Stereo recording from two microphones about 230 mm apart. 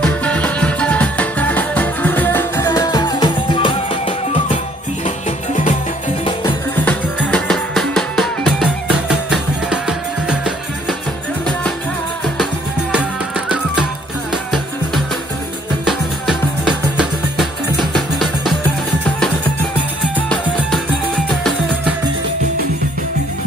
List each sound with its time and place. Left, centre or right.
0.0 s music: centre; by 5.8 s left
6.7 s music: centre
15.8 s music: centre